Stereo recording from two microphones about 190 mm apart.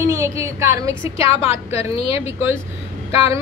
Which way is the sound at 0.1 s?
15° right (ahead or behind).